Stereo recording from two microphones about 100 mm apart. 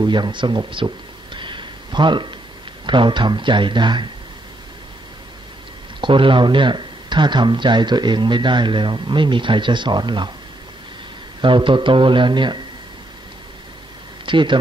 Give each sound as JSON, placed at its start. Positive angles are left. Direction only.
{"t": 0.0, "sound": "a man's voice", "side_deg": -50}
{"t": 5.9, "sound": "speech", "side_deg": -55}
{"t": 11.4, "sound": "speech", "side_deg": -55}
{"t": 14.2, "sound": "speech", "side_deg": -55}